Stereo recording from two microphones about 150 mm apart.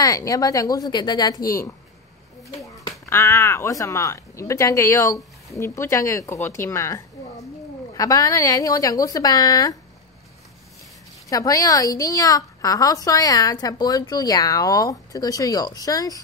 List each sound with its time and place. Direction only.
0.0 s a woman's voice: 25° left (ahead or behind)
11.2 s a woman's voice: 25° left (ahead or behind)